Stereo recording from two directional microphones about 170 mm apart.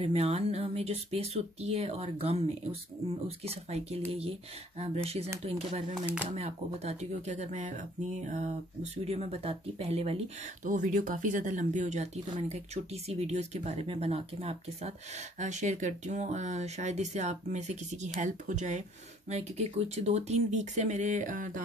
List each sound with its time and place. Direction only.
0.0 s speech: 35° right (ahead or behind)
9.0 s speech: 35° right (ahead or behind)